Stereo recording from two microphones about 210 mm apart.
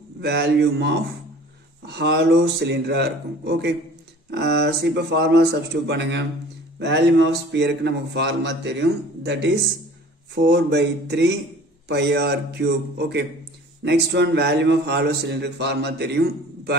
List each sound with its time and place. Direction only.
0.2 s a man's voice: 50° right (ahead or behind)